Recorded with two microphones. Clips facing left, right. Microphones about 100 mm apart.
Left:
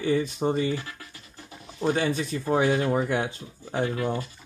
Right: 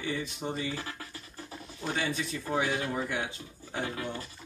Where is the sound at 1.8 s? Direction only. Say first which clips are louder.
Left 8 dB; 40° left (ahead or behind).